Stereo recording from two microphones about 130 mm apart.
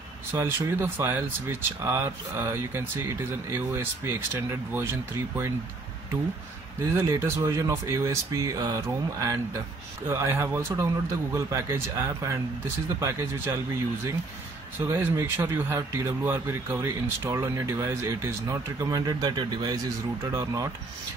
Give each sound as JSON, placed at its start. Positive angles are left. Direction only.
{"t": 0.3, "sound": "speech", "side_deg": -15}
{"t": 6.8, "sound": "speech", "side_deg": -20}
{"t": 14.8, "sound": "speech", "side_deg": -20}